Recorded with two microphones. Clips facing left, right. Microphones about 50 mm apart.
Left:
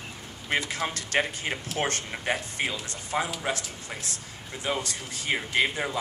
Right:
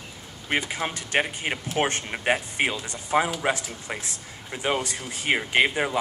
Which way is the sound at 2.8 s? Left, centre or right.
Centre.